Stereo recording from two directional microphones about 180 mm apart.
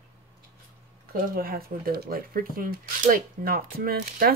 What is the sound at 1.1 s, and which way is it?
Speech, 55° right (ahead or behind).